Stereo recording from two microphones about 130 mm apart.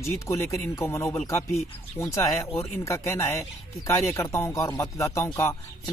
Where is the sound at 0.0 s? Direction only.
20° left (ahead or behind).